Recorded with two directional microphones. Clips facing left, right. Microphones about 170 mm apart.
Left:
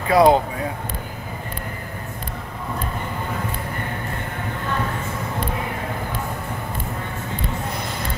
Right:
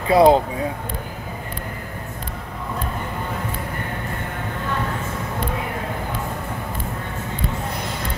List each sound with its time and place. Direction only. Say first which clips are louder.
0.1 s speech: right 1 dB; 30° right (ahead or behind)